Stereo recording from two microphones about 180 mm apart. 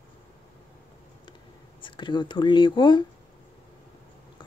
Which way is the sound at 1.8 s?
25° left (ahead or behind).